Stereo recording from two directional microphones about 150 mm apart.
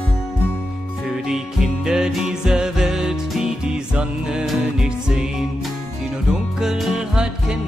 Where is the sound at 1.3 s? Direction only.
5° right (ahead or behind).